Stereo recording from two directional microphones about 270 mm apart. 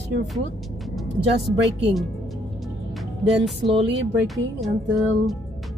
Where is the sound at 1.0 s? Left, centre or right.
Centre.